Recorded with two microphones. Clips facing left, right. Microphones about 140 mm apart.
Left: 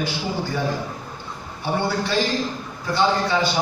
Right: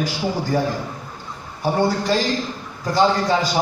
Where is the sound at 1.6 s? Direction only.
40° right (ahead or behind).